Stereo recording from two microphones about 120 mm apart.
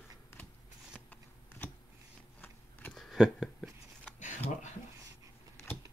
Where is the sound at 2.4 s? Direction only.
15° left (ahead or behind).